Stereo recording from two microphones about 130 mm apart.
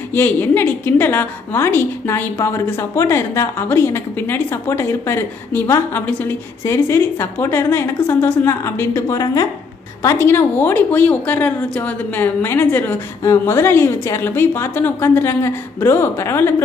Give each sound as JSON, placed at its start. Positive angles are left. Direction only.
{"t": 0.1, "sound": "a woman's voice", "side_deg": 15}